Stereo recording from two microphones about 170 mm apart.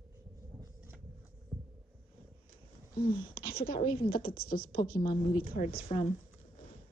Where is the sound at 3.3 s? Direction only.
60° left (ahead or behind).